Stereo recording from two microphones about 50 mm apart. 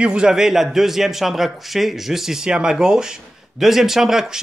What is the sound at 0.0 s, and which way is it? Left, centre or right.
A man's voice, centre.